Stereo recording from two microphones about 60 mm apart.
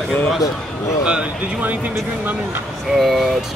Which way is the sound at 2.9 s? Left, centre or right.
Centre.